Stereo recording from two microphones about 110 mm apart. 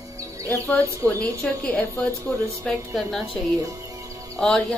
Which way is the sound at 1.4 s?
5° left (ahead or behind).